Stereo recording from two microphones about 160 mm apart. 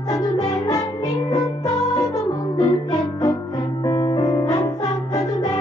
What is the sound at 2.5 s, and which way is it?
Music, 20° left (ahead or behind).